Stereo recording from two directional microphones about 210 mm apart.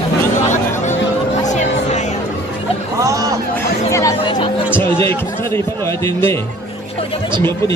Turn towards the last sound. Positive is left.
turn(degrees=10)  # may be behind; listen again after turning